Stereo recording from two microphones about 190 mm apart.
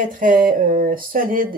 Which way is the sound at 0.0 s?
45° right (ahead or behind).